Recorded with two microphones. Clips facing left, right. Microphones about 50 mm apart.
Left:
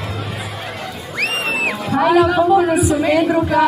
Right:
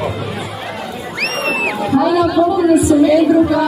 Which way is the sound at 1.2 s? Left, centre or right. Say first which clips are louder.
Right 1 dB; centre.